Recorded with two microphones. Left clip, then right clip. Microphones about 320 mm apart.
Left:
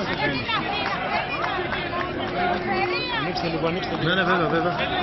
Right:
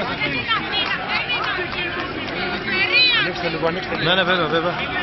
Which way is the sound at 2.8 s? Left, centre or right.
Centre.